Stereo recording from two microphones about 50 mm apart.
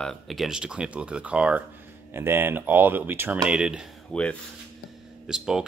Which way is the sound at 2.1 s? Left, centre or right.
Right.